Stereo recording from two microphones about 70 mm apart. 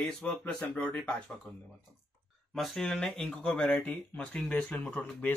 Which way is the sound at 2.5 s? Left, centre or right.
Centre.